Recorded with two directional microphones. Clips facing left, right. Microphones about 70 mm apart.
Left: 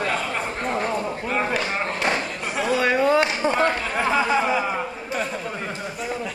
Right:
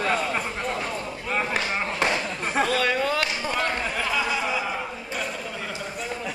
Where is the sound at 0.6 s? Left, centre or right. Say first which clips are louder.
Left 5 dB; left.